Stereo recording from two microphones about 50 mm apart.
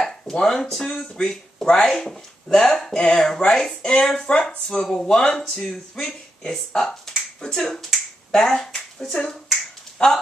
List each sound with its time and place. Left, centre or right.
0.0 s speech: centre
1.3 s speech: centre